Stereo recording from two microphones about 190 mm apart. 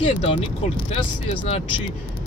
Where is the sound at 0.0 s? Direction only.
30° left (ahead or behind).